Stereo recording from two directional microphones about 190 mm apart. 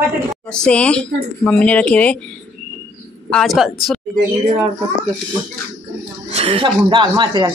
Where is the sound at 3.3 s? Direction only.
Centre (ahead or behind).